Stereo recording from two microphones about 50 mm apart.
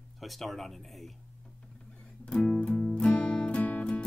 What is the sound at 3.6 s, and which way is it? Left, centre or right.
Music, left.